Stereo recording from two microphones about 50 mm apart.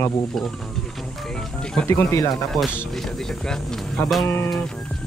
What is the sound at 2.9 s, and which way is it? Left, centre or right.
Speech, centre.